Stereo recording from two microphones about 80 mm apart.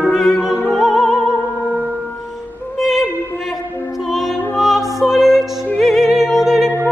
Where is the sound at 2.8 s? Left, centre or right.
Centre.